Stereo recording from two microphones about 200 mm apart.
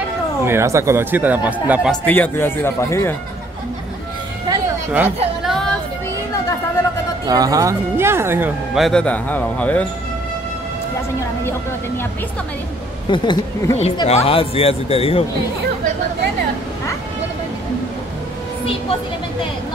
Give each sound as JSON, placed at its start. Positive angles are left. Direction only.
{"t": 0.5, "sound": "speech", "side_deg": -15}
{"t": 2.0, "sound": "speech", "side_deg": 10}
{"t": 4.5, "sound": "a sound", "side_deg": -10}
{"t": 7.2, "sound": "speech", "side_deg": -20}
{"t": 13.1, "sound": "speech", "side_deg": 20}